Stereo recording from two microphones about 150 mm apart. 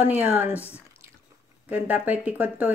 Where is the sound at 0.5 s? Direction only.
15° left (ahead or behind).